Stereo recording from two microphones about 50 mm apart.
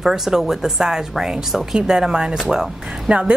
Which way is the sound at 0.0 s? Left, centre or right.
Centre.